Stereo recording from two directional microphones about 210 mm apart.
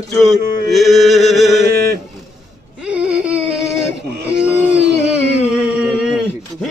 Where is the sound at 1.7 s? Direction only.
50° right (ahead or behind).